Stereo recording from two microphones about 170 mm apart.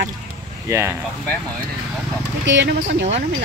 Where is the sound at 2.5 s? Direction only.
80° right.